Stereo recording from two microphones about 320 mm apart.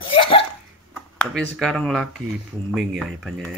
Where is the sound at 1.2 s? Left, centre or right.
Centre.